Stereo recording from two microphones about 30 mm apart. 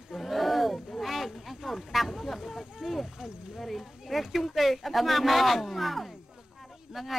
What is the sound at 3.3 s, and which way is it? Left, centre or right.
Speech, right.